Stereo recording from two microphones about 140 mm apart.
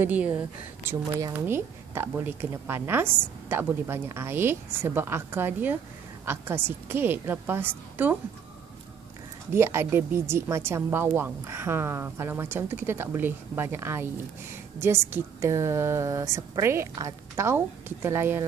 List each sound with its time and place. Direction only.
0.0 s a woman's voice: 10° right (ahead or behind)
9.5 s a woman's voice: 20° right (ahead or behind)